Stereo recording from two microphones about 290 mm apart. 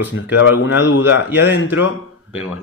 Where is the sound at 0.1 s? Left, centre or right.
Left.